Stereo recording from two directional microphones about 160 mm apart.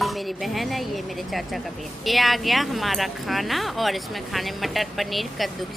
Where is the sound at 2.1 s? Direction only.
Centre (ahead or behind).